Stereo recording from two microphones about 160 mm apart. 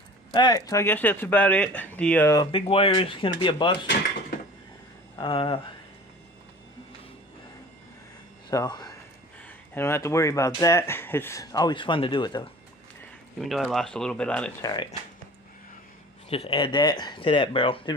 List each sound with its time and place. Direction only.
0.3 s speech: 30° left (ahead or behind)
0.7 s speech: 15° left (ahead or behind)
2.3 s speech: 30° left (ahead or behind)
5.1 s speech: 30° left (ahead or behind)
8.5 s speech: 25° left (ahead or behind)
13.4 s speech: centre (ahead or behind)
14.6 s speech: 25° left (ahead or behind)
16.3 s speech: 35° left (ahead or behind)